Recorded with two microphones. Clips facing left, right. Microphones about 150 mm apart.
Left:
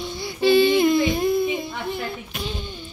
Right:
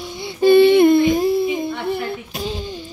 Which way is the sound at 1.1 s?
30° right (ahead or behind).